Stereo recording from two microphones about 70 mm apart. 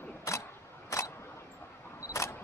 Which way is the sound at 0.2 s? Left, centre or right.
Left.